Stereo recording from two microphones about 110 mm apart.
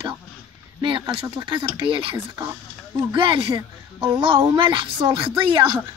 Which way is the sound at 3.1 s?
50° right (ahead or behind).